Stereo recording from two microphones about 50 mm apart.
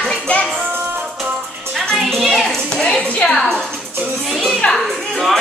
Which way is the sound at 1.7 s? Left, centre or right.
Centre.